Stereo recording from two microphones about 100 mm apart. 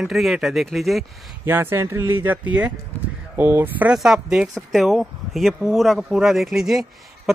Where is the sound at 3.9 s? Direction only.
5° right (ahead or behind).